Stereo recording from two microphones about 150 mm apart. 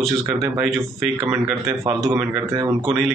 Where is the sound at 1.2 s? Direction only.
20° right (ahead or behind).